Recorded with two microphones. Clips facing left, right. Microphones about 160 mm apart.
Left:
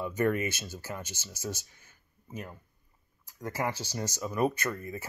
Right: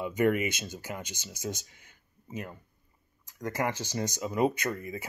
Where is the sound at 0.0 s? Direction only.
15° right (ahead or behind).